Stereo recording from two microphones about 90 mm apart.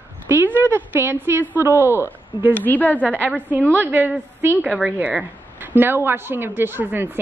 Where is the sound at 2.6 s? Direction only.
20° left (ahead or behind).